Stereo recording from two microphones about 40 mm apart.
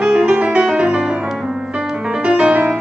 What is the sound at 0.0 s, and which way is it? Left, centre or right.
Music, right.